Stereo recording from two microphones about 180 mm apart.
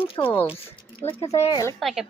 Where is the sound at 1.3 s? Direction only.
35° left (ahead or behind).